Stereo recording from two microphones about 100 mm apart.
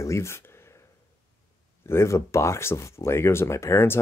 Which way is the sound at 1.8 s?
25° left (ahead or behind).